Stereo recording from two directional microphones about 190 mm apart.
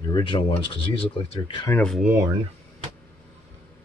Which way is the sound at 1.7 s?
5° left (ahead or behind).